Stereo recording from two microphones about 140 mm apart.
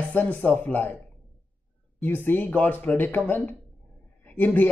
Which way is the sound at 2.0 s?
15° left (ahead or behind).